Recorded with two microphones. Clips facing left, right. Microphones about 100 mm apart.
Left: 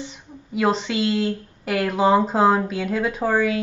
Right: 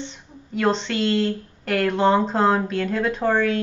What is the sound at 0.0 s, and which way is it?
Speech, 5° left (ahead or behind).